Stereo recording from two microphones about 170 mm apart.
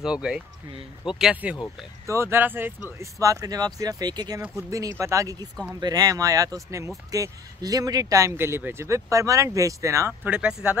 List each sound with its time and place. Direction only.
0.0 s speech: 5° right (ahead or behind)